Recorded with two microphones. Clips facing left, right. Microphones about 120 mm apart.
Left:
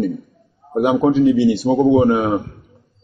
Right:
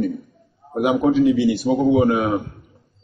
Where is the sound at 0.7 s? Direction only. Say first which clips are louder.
Left 3 dB; 25° left (ahead or behind).